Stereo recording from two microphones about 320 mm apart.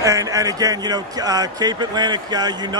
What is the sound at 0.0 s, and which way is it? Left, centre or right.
Speech, centre.